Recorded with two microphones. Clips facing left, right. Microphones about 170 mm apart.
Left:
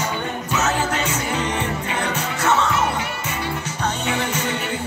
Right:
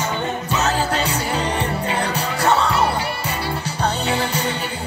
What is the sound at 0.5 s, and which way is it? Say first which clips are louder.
Music: right 1 dB; 35° right (ahead or behind).